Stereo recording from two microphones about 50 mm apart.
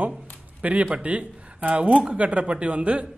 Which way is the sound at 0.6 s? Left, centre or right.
Right.